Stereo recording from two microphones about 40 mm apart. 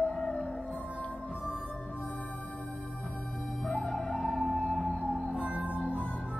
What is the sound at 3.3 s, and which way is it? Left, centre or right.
Music, centre.